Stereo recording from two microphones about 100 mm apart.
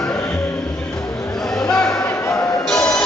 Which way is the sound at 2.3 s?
25° left (ahead or behind).